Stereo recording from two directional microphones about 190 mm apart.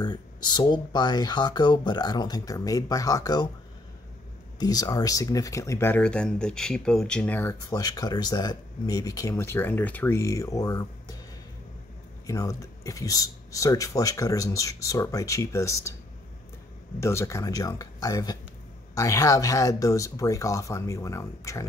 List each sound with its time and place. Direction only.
0.0 s speech: 20° left (ahead or behind)
4.6 s speech: 20° left (ahead or behind)
12.3 s speech: 20° left (ahead or behind)
17.0 s speech: 15° left (ahead or behind)